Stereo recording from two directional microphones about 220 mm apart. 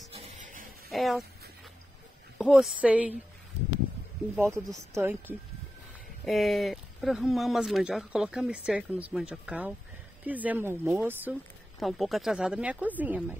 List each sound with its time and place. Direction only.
0.1 s a sound: 25° right (ahead or behind)
0.8 s speech: centre (ahead or behind)
2.3 s speech: 5° right (ahead or behind)
4.4 s speech: 10° right (ahead or behind)
6.2 s speech: centre (ahead or behind)